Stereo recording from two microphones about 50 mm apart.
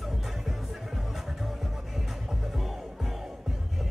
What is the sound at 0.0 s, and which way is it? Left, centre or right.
Music, centre.